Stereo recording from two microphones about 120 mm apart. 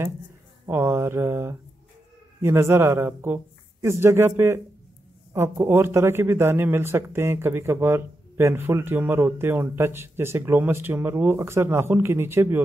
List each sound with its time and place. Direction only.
0.7 s speech: 20° right (ahead or behind)